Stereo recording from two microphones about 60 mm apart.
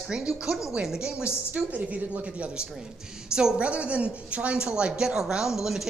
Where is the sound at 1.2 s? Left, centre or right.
Right.